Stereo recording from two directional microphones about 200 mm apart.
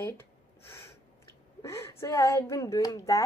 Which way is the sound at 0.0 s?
10° left (ahead or behind).